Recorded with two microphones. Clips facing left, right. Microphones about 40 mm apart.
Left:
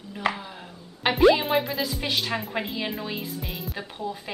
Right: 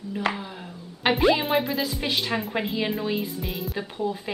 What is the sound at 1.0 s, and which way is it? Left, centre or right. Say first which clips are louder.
A woman's voice: left 2 dB; centre.